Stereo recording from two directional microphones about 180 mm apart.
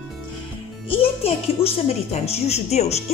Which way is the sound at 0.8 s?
30° left (ahead or behind).